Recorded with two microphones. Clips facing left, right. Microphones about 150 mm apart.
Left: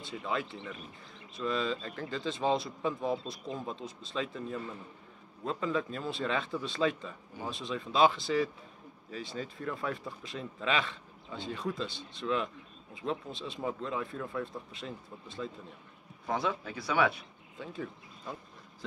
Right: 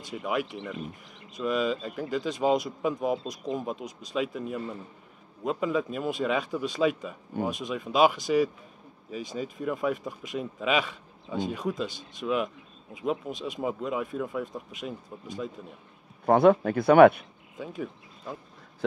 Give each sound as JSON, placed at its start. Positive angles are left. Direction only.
{"t": 0.0, "sound": "speech", "side_deg": -15}
{"t": 16.3, "sound": "speech", "side_deg": -55}
{"t": 17.6, "sound": "speech", "side_deg": -10}